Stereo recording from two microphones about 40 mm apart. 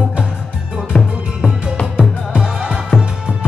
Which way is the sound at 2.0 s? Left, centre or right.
Right.